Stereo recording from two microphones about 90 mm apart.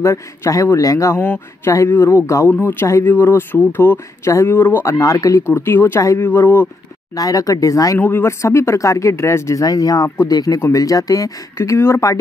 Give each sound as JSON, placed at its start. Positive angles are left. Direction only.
{"t": 0.0, "sound": "speech", "side_deg": 35}
{"t": 1.2, "sound": "speech", "side_deg": 20}
{"t": 1.7, "sound": "speech", "side_deg": 35}
{"t": 7.2, "sound": "speech", "side_deg": 40}
{"t": 8.0, "sound": "speech", "side_deg": 25}